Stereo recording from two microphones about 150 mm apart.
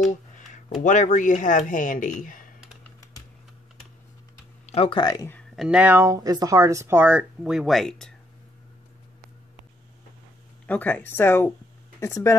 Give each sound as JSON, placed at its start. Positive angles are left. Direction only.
{"t": 0.8, "sound": "speech", "side_deg": 55}
{"t": 3.0, "sound": "typing", "side_deg": 25}
{"t": 4.6, "sound": "speech", "side_deg": 40}
{"t": 5.6, "sound": "speech", "side_deg": -5}
{"t": 6.0, "sound": "speech", "side_deg": -25}
{"t": 10.7, "sound": "speech", "side_deg": 10}